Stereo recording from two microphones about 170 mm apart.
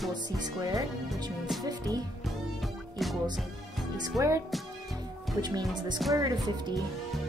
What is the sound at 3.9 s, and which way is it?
Speech, 20° right (ahead or behind).